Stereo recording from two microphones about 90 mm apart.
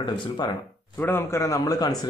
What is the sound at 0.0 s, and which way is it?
Speech, 60° left (ahead or behind).